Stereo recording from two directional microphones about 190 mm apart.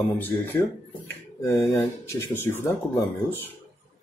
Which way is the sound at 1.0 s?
10° left (ahead or behind).